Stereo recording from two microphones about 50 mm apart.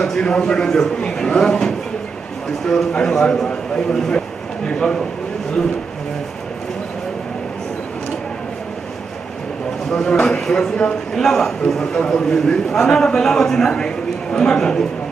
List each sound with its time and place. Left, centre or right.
0.0 s a man's voice: centre
9.9 s speech: left
10.4 s a man's voice: centre